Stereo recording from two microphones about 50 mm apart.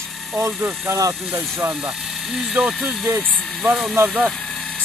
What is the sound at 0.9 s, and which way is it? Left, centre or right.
Speech, right.